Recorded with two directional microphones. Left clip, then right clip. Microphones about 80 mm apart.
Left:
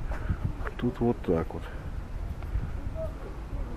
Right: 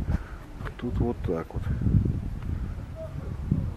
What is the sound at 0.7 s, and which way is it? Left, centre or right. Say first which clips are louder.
Speech: left 2 dB; centre.